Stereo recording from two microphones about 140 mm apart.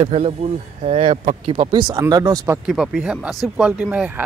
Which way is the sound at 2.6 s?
5° right (ahead or behind).